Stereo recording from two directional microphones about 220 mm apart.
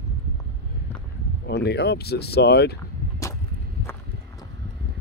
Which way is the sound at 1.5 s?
50° left (ahead or behind).